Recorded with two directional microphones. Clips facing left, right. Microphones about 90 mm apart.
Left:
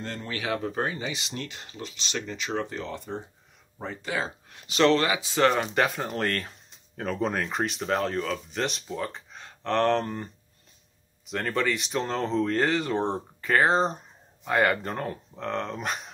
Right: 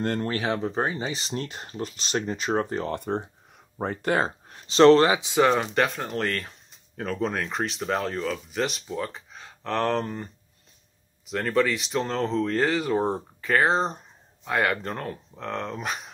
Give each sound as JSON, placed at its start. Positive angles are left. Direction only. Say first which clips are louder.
{"t": 0.0, "sound": "speech", "louder": "right 9 dB", "side_deg": -55}
{"t": 0.3, "sound": "speech", "louder": "right 3 dB", "side_deg": -40}
{"t": 3.0, "sound": "speech", "louder": "right 7 dB", "side_deg": -60}
{"t": 4.5, "sound": "speech", "louder": "right 6 dB", "side_deg": -35}
{"t": 5.2, "sound": "speech", "louder": "right 1 dB", "side_deg": -15}
{"t": 5.8, "sound": "speech", "louder": "right 1 dB", "side_deg": 0}